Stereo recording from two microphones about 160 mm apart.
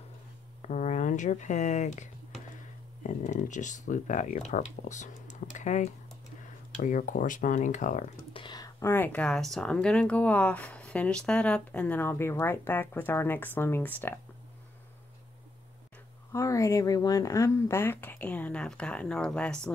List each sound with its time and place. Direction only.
0.6 s speech: 50° left (ahead or behind)
8.3 s speech: 30° left (ahead or behind); by 14.2 s 15° left (ahead or behind)
16.3 s speech: 20° left (ahead or behind)